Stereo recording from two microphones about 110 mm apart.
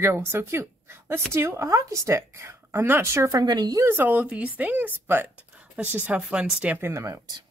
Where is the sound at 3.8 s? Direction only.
20° right (ahead or behind).